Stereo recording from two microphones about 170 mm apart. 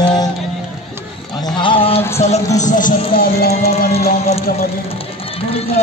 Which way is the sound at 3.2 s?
65° left (ahead or behind).